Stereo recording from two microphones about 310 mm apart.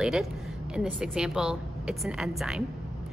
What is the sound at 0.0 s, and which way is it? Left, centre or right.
A woman's voice, centre.